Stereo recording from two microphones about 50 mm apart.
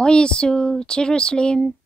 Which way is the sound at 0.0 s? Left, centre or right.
Centre.